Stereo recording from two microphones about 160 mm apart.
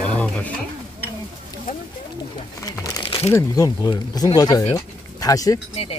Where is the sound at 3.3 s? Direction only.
25° left (ahead or behind).